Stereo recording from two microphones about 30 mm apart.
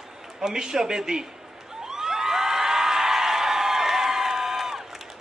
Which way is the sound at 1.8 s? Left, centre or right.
Centre.